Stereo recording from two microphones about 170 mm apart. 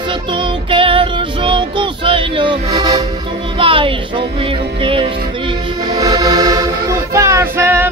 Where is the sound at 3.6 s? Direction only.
30° right (ahead or behind).